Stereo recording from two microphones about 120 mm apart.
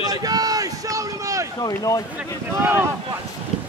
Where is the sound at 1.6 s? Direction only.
30° left (ahead or behind).